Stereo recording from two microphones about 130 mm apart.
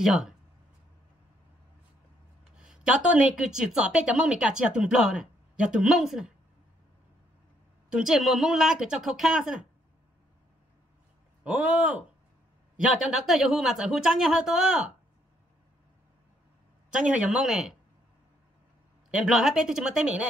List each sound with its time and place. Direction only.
0.0 s speech: 5° right (ahead or behind)
2.6 s speech: 5° right (ahead or behind)
7.9 s speech: 5° right (ahead or behind)
11.4 s speech: 10° right (ahead or behind)
16.9 s speech: 10° right (ahead or behind)
19.0 s speech: 5° right (ahead or behind)